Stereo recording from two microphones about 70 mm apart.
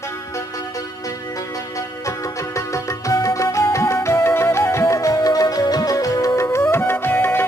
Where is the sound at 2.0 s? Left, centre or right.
Left.